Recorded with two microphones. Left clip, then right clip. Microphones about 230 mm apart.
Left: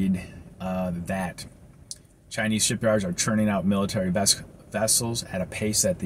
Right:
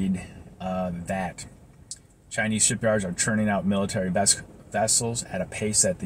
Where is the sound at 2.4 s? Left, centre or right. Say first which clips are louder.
Left 1 dB; centre.